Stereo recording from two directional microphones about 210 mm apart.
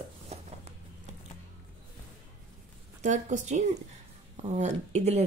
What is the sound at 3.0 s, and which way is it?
Speech, 35° right (ahead or behind).